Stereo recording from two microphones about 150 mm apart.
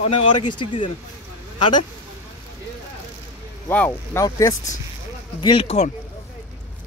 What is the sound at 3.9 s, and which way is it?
Speech, 20° left (ahead or behind).